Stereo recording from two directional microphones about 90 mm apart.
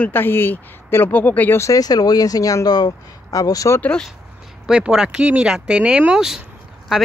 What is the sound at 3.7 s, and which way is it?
Speech, 15° left (ahead or behind).